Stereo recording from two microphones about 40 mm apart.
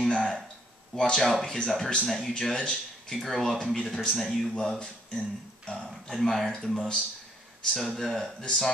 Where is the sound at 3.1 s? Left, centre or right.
Centre.